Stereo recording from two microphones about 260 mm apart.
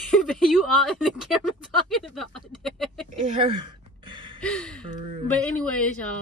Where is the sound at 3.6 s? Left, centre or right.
Centre.